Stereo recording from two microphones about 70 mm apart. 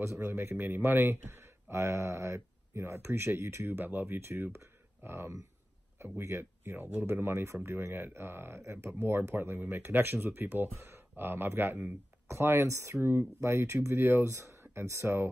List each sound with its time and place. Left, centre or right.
0.0 s speech: right